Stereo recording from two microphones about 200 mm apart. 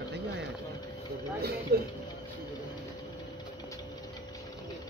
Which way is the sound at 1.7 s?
50° right (ahead or behind).